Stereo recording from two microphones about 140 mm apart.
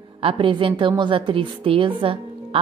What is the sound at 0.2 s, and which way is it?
A woman's voice, 40° right (ahead or behind).